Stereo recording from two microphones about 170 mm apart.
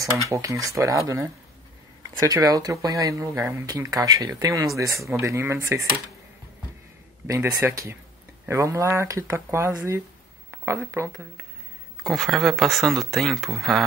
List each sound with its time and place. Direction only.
0.3 s speech: 20° right (ahead or behind)
7.2 s speech: 20° right (ahead or behind)
12.0 s speech: centre (ahead or behind)